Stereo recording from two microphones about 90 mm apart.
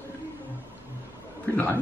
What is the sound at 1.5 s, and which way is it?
Speech, 20° left (ahead or behind).